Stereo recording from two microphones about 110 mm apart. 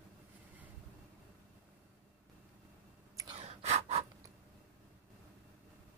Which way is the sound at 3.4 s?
75° right (ahead or behind).